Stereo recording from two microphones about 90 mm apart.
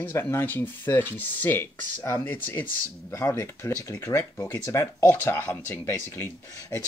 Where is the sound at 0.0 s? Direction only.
25° left (ahead or behind).